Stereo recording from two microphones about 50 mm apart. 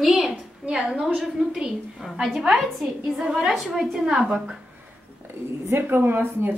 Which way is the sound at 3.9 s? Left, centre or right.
Centre.